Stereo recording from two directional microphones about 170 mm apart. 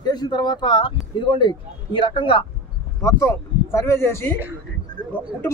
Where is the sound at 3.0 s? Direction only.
15° left (ahead or behind).